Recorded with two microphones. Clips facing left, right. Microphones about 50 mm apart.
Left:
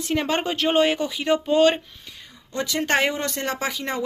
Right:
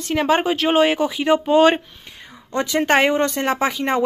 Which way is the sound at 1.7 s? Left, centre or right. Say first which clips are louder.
Right 6 dB; right.